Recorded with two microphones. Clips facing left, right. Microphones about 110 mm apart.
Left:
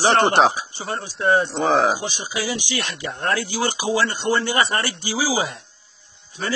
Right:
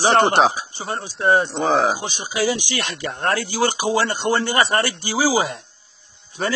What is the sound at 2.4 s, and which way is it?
A man's voice, 65° right (ahead or behind).